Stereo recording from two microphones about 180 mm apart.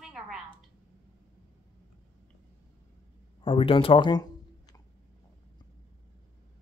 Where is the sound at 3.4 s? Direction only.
30° left (ahead or behind).